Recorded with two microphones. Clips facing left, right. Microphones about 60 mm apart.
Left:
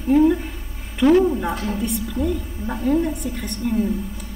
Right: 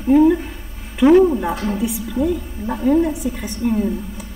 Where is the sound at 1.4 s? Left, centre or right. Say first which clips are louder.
Right 3 dB; centre.